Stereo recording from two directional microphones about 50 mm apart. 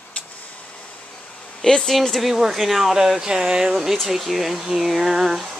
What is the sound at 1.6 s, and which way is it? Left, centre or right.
Speech, centre.